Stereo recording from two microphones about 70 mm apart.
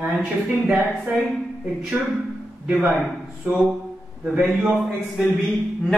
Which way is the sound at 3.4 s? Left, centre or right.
Right.